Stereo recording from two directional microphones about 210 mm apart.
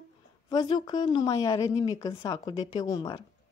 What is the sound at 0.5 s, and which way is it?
A woman's voice, 20° left (ahead or behind).